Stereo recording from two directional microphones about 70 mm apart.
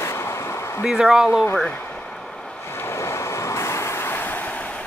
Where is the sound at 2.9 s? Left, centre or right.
Left.